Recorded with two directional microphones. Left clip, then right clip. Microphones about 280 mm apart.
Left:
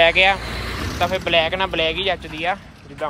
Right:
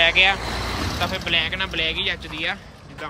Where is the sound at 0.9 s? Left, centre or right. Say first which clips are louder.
Left 5 dB; centre.